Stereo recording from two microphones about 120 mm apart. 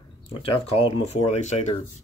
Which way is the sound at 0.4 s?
55° left (ahead or behind).